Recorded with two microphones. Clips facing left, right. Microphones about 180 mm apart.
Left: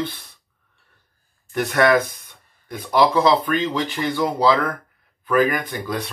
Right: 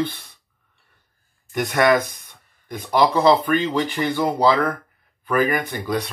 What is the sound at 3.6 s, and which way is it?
Speech, 10° right (ahead or behind).